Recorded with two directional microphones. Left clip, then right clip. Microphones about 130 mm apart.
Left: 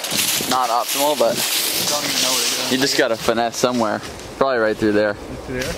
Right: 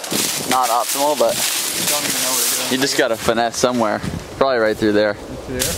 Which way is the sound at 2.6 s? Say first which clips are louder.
Right 1 dB; centre (ahead or behind).